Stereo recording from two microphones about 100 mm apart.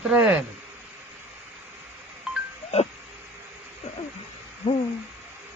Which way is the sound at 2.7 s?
90° left.